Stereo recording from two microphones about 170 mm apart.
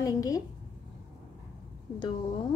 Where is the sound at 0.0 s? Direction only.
20° left (ahead or behind).